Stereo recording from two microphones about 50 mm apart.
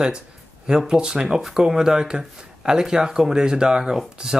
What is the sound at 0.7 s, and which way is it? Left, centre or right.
Speech, centre.